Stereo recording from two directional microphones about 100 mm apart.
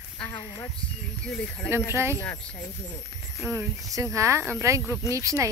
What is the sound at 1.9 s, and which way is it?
Speech, 25° right (ahead or behind).